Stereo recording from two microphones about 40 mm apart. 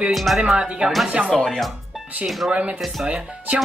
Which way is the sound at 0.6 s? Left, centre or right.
Centre.